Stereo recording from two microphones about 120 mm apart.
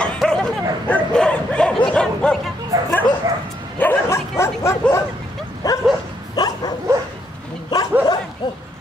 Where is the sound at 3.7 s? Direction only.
20° left (ahead or behind).